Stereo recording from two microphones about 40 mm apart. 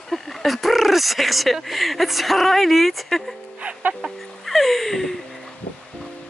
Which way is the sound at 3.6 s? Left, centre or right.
Right.